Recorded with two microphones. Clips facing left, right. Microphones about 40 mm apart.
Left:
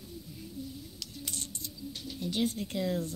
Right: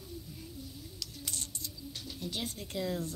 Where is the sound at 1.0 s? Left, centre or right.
Left.